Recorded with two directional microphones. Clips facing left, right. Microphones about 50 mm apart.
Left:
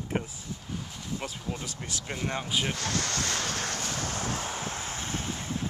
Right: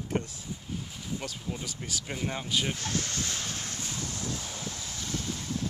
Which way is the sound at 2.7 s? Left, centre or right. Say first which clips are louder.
Left 2 dB; left.